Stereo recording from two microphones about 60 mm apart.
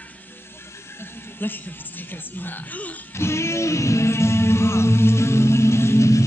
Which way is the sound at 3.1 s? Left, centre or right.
Left.